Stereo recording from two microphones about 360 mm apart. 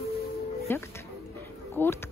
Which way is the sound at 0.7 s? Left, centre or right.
Centre.